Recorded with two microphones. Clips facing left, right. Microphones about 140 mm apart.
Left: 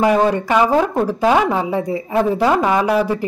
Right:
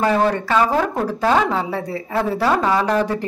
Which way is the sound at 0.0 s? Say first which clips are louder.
Left 3 dB; 15° left (ahead or behind).